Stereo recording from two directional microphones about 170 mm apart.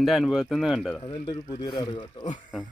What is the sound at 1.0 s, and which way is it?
Speech, 25° left (ahead or behind).